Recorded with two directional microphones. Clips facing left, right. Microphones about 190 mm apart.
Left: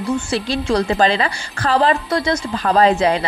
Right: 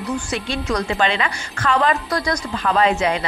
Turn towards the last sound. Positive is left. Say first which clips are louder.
# left 4 dB
turn(degrees=35)  # may be behind; listen again after turning